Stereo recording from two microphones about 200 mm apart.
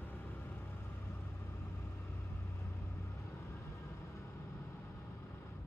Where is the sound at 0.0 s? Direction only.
10° left (ahead or behind).